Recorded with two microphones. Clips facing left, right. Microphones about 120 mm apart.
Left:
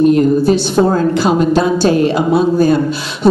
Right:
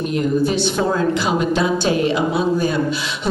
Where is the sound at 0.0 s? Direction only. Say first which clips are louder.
Left 9 dB; 40° left (ahead or behind).